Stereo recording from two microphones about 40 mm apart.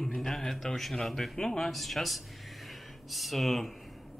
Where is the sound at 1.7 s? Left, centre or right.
Centre.